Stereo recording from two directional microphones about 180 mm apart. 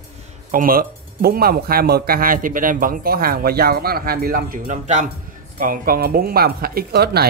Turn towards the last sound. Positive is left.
turn(degrees=-60)  # may be behind; listen again after turning